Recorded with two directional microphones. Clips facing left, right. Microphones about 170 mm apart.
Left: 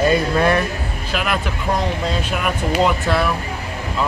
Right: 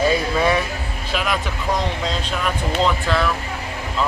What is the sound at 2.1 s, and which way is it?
Speech, 10° left (ahead or behind).